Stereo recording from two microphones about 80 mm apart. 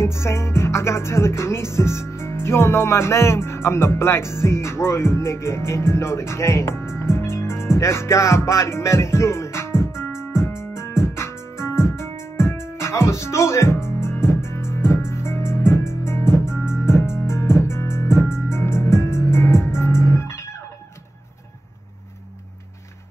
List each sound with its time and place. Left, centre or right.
0.0 s music: left